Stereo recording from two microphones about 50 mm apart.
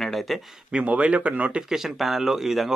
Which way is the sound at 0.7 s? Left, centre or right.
Right.